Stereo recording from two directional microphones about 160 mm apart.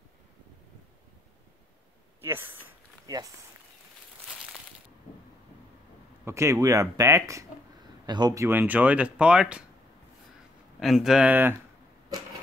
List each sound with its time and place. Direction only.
2.2 s speech: 15° right (ahead or behind)
3.1 s speech: 25° right (ahead or behind)
6.2 s speech: 20° right (ahead or behind)
8.5 s speech: 10° right (ahead or behind)
10.8 s speech: centre (ahead or behind)